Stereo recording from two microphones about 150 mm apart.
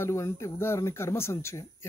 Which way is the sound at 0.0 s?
20° left (ahead or behind).